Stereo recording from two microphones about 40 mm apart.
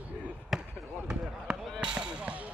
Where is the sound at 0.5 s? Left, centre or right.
Centre.